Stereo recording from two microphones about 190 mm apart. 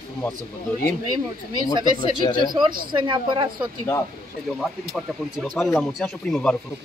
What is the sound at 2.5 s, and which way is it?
Speech, 25° right (ahead or behind).